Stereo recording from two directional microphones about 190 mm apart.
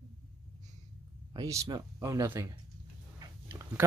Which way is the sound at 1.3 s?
15° right (ahead or behind).